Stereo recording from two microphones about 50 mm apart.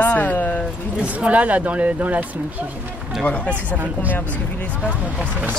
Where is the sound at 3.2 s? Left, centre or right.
Left.